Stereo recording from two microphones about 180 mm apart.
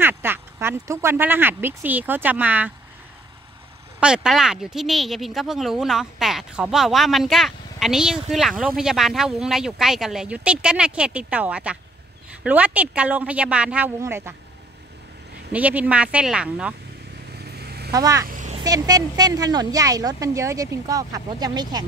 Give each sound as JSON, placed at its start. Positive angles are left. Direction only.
{"t": 0.0, "sound": "speech", "side_deg": -10}
{"t": 4.0, "sound": "speech", "side_deg": -5}
{"t": 15.5, "sound": "speech", "side_deg": -10}
{"t": 17.5, "sound": "vehicle", "side_deg": -65}
{"t": 17.9, "sound": "a woman's voice", "side_deg": -20}
{"t": 18.2, "sound": "vehicle", "side_deg": -45}
{"t": 18.6, "sound": "a woman's voice", "side_deg": -20}